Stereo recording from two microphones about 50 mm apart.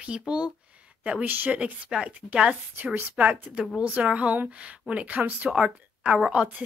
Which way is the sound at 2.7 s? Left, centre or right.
Right.